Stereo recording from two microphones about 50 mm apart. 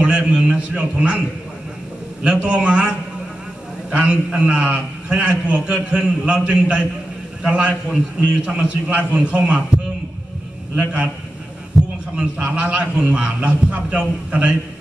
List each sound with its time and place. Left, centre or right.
0.0 s a man's voice: centre
2.4 s a man's voice: right
3.9 s a man's voice: centre
10.8 s a man's voice: centre
11.7 s heart sounds: centre
12.4 s a man's voice: right